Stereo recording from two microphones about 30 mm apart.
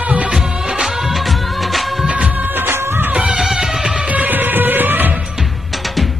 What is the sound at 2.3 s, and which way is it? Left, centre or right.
Music of bollywood, right.